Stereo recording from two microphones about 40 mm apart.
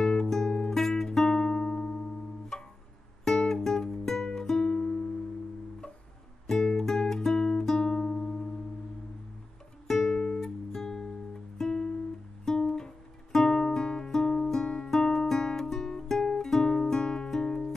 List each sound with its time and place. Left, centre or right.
0.0 s music: centre
6.4 s music: centre
9.8 s music: centre